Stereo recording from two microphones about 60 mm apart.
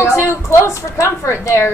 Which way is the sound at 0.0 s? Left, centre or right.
Left.